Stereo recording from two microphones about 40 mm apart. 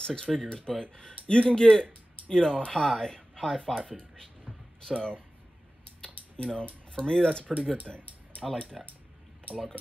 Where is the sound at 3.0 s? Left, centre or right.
Centre.